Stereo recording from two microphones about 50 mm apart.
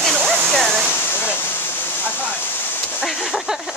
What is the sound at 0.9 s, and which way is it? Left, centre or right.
Speech, left.